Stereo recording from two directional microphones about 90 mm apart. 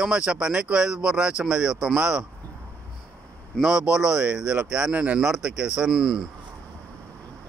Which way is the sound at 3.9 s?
10° right (ahead or behind).